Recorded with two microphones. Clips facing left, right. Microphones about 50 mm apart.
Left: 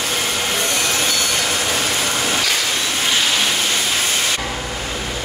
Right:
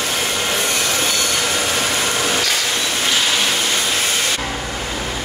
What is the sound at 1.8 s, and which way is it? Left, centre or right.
Vehicle, centre.